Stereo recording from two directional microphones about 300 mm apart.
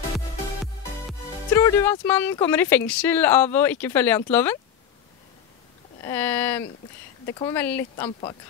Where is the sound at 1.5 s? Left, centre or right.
Centre.